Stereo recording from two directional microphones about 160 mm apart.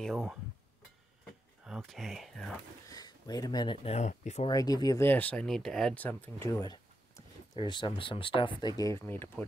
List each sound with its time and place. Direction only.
0.0 s speech: centre (ahead or behind)
1.7 s speech: centre (ahead or behind)
2.9 s speech: 25° left (ahead or behind); by 4.5 s 45° left (ahead or behind)
4.5 s speech: 25° left (ahead or behind)